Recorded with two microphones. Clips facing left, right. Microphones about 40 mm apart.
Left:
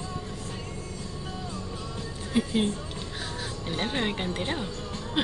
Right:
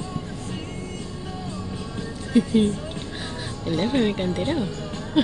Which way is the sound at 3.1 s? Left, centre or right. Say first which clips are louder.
Right 3 dB; centre.